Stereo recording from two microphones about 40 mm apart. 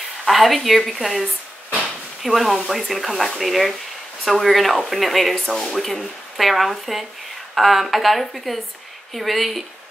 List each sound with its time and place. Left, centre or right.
0.2 s speech: centre